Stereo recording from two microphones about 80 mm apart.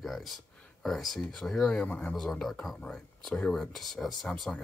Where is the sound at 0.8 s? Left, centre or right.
Centre.